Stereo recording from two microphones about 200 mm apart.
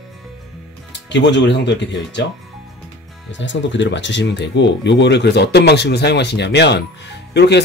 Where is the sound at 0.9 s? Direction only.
60° left (ahead or behind).